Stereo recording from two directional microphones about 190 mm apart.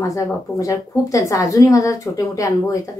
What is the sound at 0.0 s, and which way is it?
Speech, 15° left (ahead or behind).